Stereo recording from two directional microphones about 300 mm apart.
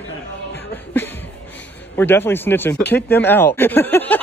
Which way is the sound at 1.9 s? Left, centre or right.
Centre.